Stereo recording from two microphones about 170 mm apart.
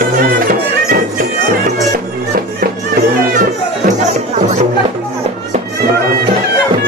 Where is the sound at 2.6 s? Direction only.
60° right (ahead or behind).